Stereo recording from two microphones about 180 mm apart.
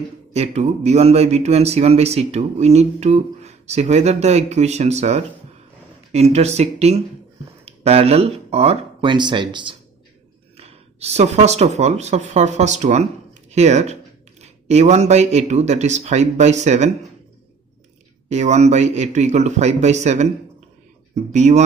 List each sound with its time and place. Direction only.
0.3 s speech: 35° right (ahead or behind)
18.3 s speech: 40° right (ahead or behind)